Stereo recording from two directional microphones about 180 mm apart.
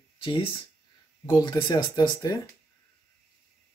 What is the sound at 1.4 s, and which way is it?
Speech, 25° left (ahead or behind).